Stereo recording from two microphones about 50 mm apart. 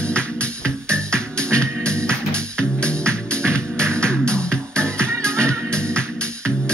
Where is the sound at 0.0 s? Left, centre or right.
Left.